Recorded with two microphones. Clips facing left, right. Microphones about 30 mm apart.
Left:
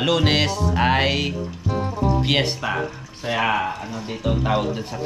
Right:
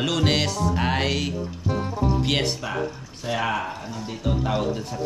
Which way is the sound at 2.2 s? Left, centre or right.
Centre.